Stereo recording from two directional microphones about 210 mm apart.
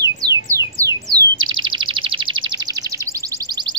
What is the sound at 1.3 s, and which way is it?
Chirp, 70° right (ahead or behind).